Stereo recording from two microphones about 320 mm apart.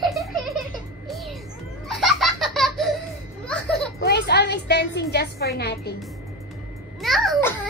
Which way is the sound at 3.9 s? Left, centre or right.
Left.